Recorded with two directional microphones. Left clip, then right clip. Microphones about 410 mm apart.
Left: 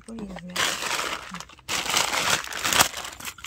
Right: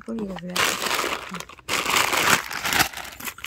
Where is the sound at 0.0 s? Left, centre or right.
Centre.